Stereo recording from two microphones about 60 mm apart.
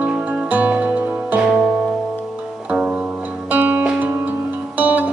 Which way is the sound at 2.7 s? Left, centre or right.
Right.